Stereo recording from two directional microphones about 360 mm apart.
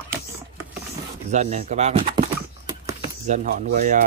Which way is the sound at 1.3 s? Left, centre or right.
Centre.